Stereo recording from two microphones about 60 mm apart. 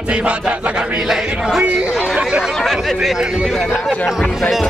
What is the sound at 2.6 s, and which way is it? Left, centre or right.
Speech, centre.